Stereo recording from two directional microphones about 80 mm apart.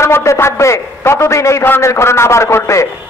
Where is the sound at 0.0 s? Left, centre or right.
Left.